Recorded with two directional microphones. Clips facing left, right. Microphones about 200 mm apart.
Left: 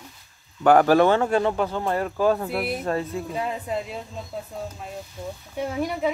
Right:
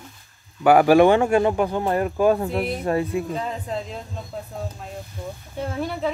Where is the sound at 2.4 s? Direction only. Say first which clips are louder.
Right 2 dB; 10° left (ahead or behind).